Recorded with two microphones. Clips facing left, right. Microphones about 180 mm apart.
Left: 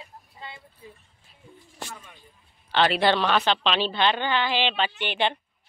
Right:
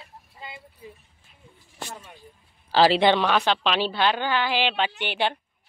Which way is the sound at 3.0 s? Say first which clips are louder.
Right 2 dB; 15° right (ahead or behind).